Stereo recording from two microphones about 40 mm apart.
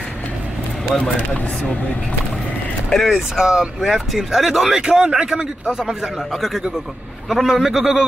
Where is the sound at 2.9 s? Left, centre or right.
Centre.